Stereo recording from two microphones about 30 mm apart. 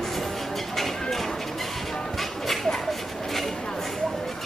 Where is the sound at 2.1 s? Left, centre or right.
Centre.